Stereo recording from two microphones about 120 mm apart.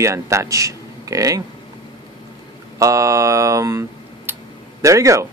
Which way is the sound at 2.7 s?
25° right (ahead or behind).